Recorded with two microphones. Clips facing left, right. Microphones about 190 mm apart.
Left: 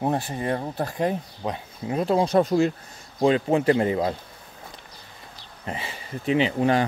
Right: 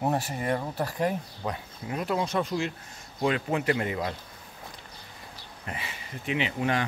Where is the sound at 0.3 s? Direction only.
30° left (ahead or behind).